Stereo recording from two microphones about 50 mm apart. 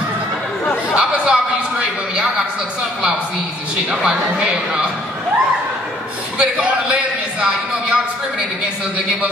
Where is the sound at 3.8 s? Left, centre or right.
Centre.